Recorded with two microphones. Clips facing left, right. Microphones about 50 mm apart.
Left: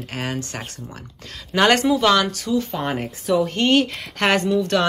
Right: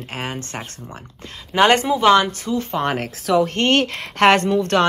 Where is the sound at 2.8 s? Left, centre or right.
Right.